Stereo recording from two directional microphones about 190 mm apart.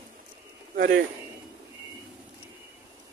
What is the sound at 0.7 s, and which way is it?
Speech, 45° right (ahead or behind).